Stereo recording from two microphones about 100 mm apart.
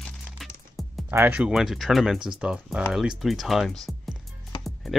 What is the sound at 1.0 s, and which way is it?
Speech, 20° right (ahead or behind).